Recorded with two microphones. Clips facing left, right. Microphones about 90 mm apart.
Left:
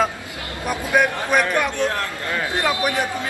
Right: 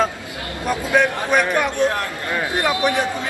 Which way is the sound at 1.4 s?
10° right (ahead or behind).